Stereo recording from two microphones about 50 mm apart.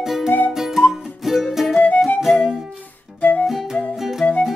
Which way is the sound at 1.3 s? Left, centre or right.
Centre.